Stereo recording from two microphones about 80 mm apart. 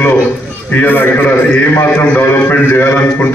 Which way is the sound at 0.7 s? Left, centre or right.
Left.